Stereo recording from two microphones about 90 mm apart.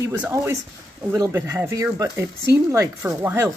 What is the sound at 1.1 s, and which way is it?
Speech, 40° right (ahead or behind).